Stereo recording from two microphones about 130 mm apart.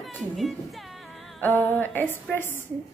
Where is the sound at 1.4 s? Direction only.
15° left (ahead or behind).